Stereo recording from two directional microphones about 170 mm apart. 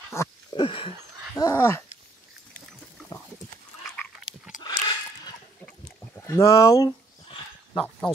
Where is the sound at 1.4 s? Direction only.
15° left (ahead or behind).